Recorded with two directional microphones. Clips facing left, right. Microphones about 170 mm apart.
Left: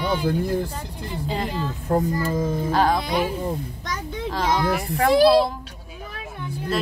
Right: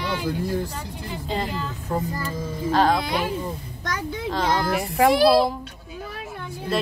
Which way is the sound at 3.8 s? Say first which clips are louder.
Right 1 dB; 5° left (ahead or behind).